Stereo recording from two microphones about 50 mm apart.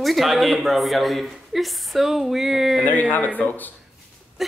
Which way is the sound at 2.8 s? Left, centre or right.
Left.